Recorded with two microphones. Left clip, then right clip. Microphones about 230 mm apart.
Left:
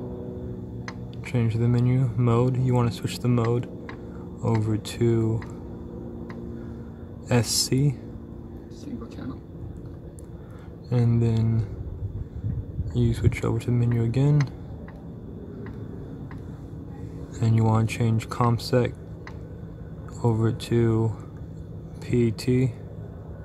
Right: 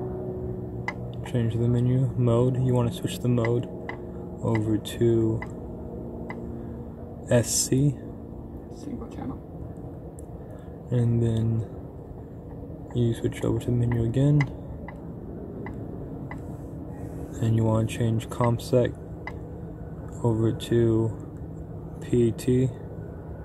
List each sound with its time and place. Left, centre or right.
1.3 s speech: left
7.2 s speech: left
10.9 s speech: left
12.9 s speech: left
17.6 s speech: left
20.2 s speech: left
22.0 s speech: left